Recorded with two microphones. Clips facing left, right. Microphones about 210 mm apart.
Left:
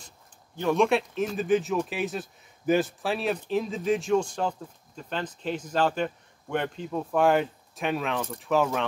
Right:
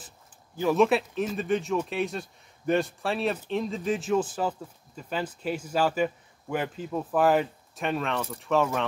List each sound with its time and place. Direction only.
0.6 s speech: 5° right (ahead or behind)